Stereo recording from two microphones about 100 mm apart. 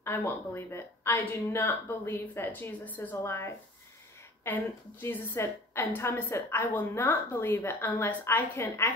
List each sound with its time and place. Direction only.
0.0 s a woman's voice: 25° left (ahead or behind)
5.0 s a woman's voice: 25° left (ahead or behind)